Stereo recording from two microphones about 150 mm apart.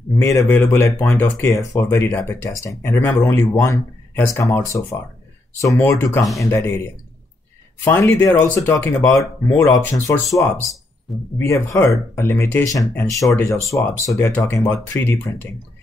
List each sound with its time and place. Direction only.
0.1 s speech: 20° left (ahead or behind)
7.8 s speech: 15° left (ahead or behind)
11.3 s speech: 20° left (ahead or behind)